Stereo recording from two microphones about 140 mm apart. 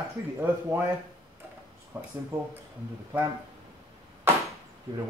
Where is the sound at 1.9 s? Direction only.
15° right (ahead or behind).